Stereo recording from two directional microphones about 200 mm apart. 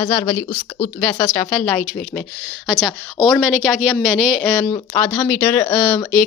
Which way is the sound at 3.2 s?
5° left (ahead or behind).